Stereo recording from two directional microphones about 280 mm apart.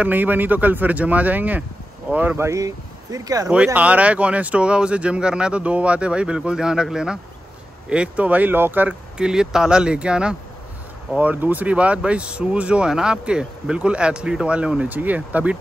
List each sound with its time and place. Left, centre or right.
0.0 s speech: centre